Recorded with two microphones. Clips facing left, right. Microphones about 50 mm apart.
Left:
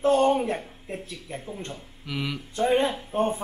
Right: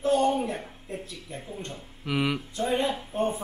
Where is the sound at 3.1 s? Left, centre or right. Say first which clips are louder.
Left 3 dB; left.